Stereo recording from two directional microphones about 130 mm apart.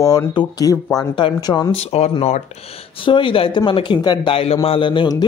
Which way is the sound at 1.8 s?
50° left (ahead or behind).